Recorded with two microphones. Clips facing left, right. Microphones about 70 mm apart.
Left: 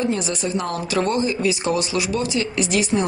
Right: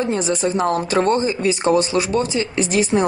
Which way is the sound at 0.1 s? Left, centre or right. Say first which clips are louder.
Right 4 dB; right.